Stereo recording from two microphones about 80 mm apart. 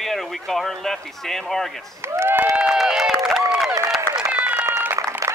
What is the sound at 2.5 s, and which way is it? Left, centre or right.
Run, centre.